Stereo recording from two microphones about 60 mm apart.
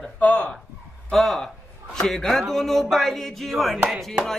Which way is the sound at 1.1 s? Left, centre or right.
Centre.